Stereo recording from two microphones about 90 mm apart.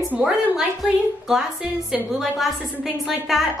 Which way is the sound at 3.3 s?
5° right (ahead or behind).